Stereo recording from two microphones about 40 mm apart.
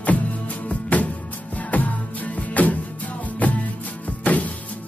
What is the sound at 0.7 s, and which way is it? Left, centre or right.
Music, left.